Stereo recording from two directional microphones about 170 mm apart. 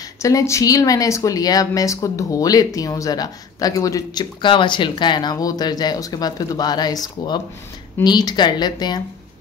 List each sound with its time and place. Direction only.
0.2 s speech: 20° left (ahead or behind)